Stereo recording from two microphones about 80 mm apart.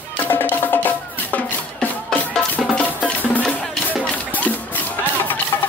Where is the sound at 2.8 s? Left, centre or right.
Left.